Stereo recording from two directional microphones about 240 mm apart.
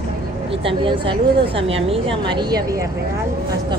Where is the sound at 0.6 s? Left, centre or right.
Right.